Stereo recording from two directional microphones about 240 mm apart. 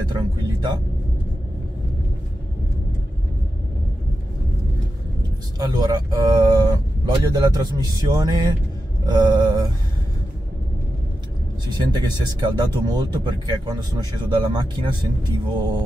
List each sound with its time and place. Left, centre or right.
0.1 s vehicle: centre
5.6 s speech: centre
11.6 s speech: centre